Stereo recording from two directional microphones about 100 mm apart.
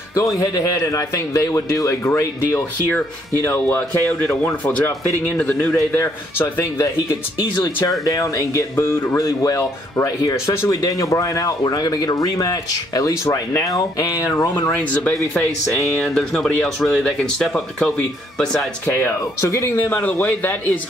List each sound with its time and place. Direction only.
0.4 s speech: 35° left (ahead or behind); by 5.9 s 15° left (ahead or behind)
5.9 s speech: 25° left (ahead or behind)
7.4 s speech: 45° left (ahead or behind)
14.8 s speech: 15° left (ahead or behind)
15.1 s speech: 5° left (ahead or behind)
19.4 s speech: 30° left (ahead or behind)